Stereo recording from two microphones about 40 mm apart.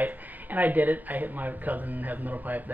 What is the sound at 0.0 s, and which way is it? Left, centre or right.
Speech, right.